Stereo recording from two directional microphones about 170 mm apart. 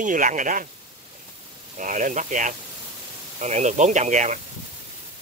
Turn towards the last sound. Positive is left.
turn(degrees=-45)  # may be behind; listen again after turning